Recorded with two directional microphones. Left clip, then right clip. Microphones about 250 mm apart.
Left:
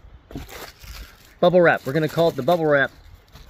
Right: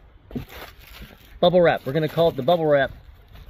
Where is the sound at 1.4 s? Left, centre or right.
Centre.